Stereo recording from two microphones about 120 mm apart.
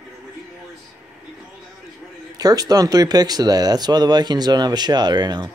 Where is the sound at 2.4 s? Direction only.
30° right (ahead or behind).